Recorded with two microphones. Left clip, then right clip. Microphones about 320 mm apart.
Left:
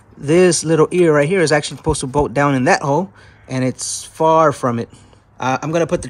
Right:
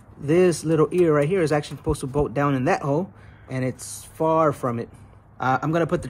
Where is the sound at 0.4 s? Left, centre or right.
Left.